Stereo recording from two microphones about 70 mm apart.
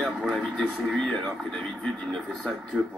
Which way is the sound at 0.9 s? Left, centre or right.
Centre.